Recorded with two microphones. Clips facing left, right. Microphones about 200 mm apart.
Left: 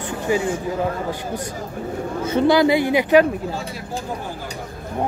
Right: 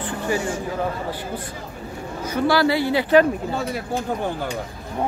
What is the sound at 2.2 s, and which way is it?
Speech, 20° left (ahead or behind).